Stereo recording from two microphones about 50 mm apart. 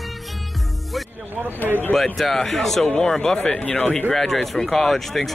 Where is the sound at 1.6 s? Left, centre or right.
Left.